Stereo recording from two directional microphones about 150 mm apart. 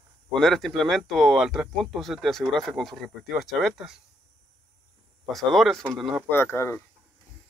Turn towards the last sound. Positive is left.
turn(degrees=15)  # may be behind; listen again after turning